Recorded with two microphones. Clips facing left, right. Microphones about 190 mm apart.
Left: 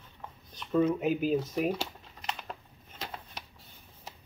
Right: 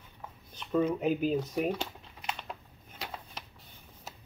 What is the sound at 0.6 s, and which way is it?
Speech, 10° right (ahead or behind).